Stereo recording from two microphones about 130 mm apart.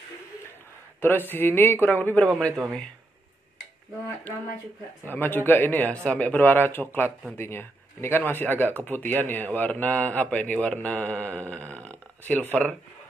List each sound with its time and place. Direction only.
1.0 s a man's voice: 15° left (ahead or behind)
5.0 s a man's voice: 15° left (ahead or behind)